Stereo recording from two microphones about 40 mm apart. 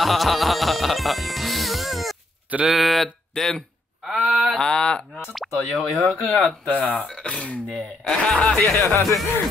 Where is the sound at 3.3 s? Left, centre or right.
Centre.